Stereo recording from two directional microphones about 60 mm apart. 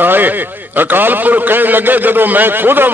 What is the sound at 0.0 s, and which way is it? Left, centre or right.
A man's voice, right.